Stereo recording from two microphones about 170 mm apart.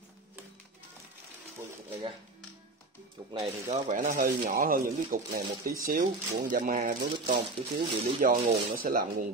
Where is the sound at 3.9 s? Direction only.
50° right (ahead or behind).